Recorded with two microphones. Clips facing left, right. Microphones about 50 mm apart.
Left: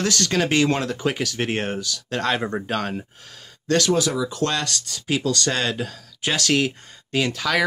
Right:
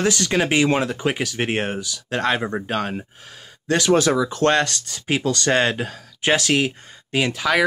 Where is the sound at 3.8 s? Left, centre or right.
Right.